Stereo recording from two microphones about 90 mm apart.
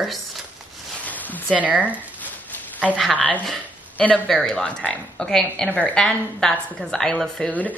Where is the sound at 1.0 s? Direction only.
20° left (ahead or behind).